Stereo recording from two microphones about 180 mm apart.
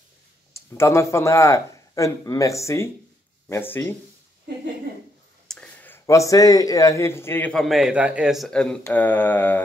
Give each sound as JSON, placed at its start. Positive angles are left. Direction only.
{"t": 0.5, "sound": "a man's voice", "side_deg": 15}
{"t": 5.5, "sound": "a man's voice", "side_deg": 5}